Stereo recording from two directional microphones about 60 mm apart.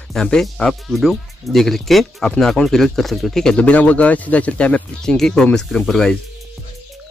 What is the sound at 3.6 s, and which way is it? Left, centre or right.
Speech, left.